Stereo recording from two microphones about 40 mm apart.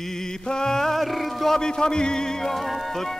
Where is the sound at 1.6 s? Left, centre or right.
Centre.